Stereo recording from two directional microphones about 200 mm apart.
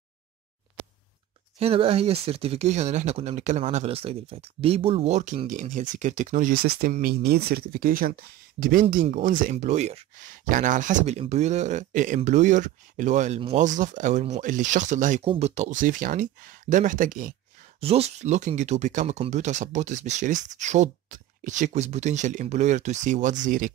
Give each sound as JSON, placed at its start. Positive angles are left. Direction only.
{"t": 1.6, "sound": "speech", "side_deg": -30}
{"t": 17.7, "sound": "speech", "side_deg": -30}